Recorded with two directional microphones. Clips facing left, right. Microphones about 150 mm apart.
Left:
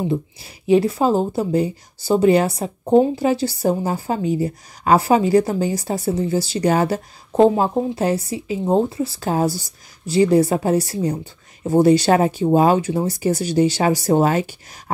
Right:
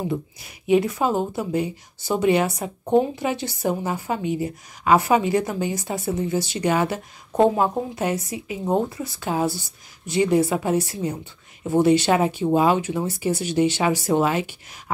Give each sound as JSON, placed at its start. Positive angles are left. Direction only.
{"t": 0.1, "sound": "a woman's voice", "side_deg": 35}